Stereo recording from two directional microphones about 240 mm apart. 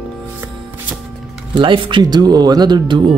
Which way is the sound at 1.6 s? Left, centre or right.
Right.